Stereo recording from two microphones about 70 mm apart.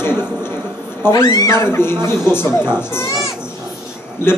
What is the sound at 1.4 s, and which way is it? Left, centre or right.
A man's voice, left.